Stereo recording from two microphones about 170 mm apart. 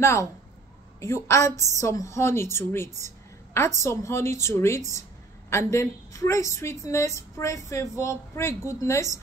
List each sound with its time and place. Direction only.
0.0 s a woman's voice: 15° left (ahead or behind)